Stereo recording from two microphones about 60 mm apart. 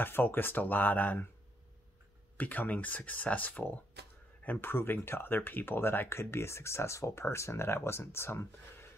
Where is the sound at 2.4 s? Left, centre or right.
Left.